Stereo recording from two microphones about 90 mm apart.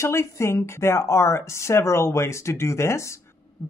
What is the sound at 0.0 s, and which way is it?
Speech, 30° left (ahead or behind).